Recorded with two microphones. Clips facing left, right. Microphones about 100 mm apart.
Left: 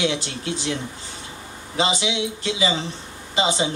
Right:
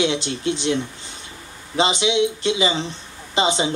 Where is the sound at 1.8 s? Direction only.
25° right (ahead or behind).